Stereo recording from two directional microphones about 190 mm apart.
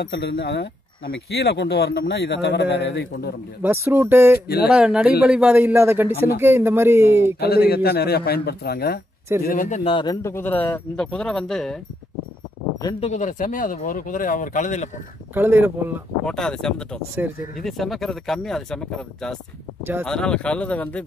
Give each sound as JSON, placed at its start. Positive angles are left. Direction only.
{"t": 0.0, "sound": "speech", "side_deg": 65}
{"t": 3.6, "sound": "a man's voice", "side_deg": -10}
{"t": 7.3, "sound": "speech", "side_deg": 55}
{"t": 9.8, "sound": "speech", "side_deg": 25}
{"t": 13.0, "sound": "speech", "side_deg": 40}
{"t": 15.3, "sound": "a man's voice", "side_deg": -10}
{"t": 16.3, "sound": "speech", "side_deg": 5}
{"t": 17.2, "sound": "a man's voice", "side_deg": -10}
{"t": 17.6, "sound": "speech", "side_deg": 0}
{"t": 19.8, "sound": "speech", "side_deg": -10}
{"t": 20.1, "sound": "speech", "side_deg": 5}